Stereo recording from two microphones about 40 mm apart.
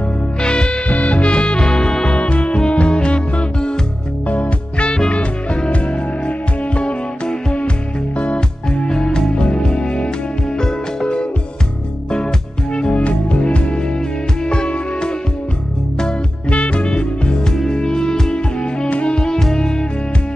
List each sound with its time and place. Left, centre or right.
0.4 s music: left
0.8 s music: left; by 2.1 s centre
2.1 s music: left
8.6 s music: centre
12.9 s music: left
16.4 s music: left